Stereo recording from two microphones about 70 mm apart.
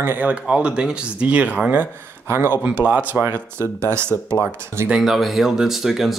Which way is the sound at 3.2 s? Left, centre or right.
Right.